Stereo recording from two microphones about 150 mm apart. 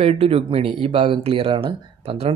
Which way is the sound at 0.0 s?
40° right (ahead or behind).